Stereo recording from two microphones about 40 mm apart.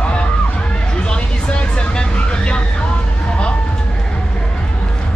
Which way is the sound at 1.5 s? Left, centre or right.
Left.